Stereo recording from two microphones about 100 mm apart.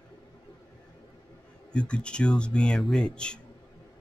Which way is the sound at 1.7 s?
10° left (ahead or behind).